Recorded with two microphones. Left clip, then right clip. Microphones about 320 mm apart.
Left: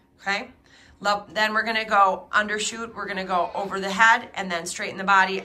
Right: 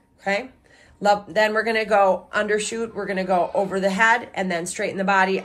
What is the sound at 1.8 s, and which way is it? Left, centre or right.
Speech, left.